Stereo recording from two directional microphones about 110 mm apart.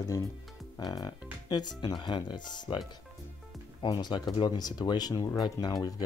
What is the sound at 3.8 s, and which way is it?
Speech, 40° left (ahead or behind).